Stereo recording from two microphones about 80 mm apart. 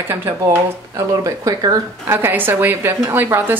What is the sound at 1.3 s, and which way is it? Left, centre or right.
Speech, right.